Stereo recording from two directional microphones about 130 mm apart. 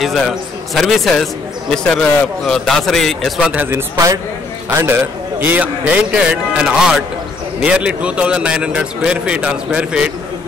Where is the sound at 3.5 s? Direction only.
15° right (ahead or behind).